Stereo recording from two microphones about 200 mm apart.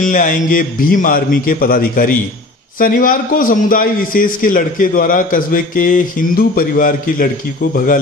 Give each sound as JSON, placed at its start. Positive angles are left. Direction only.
{"t": 0.0, "sound": "a man's voice", "side_deg": 40}